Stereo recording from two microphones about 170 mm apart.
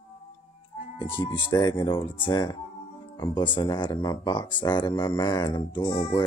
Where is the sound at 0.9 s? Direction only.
25° left (ahead or behind).